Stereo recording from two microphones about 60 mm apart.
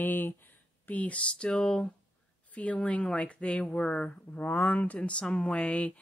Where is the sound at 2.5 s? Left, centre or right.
Left.